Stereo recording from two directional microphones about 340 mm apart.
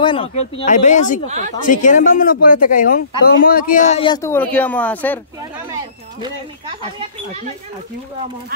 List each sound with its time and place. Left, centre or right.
0.0 s speech: centre
1.2 s a woman's voice: centre
1.7 s speech: left; by 5.2 s centre